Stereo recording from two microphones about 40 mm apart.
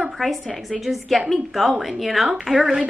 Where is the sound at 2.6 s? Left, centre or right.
Centre.